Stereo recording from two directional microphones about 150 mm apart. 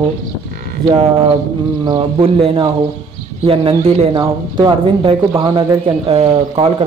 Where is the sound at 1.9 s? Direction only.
35° right (ahead or behind).